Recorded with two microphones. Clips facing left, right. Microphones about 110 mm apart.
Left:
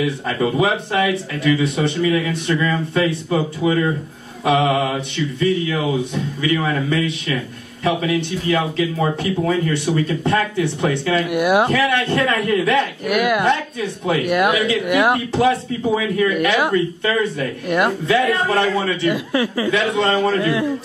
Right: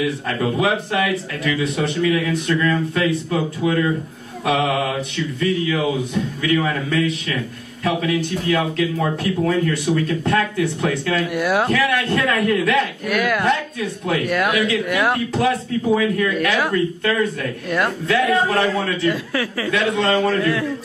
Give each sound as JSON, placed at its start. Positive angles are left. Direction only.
{"t": 0.0, "sound": "speech", "side_deg": 0}
{"t": 11.2, "sound": "speech", "side_deg": 15}
{"t": 11.7, "sound": "speech", "side_deg": 0}
{"t": 13.0, "sound": "speech", "side_deg": 15}
{"t": 13.5, "sound": "speech", "side_deg": 0}
{"t": 14.9, "sound": "speech", "side_deg": 15}
{"t": 15.3, "sound": "speech", "side_deg": 0}
{"t": 17.6, "sound": "speech", "side_deg": 15}
{"t": 18.0, "sound": "speech", "side_deg": 0}
{"t": 19.0, "sound": "speech", "side_deg": 20}
{"t": 19.7, "sound": "speech", "side_deg": 0}